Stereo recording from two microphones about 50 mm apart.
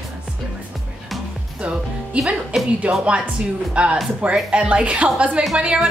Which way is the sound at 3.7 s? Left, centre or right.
Centre.